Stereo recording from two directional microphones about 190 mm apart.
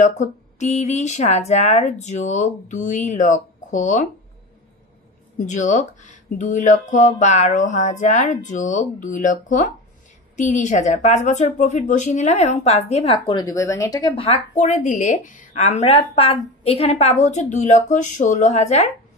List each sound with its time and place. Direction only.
0.0 s speech: 35° left (ahead or behind)
5.4 s speech: 40° left (ahead or behind)